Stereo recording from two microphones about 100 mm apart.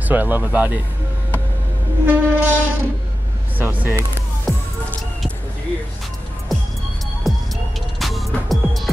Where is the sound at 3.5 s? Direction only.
15° right (ahead or behind).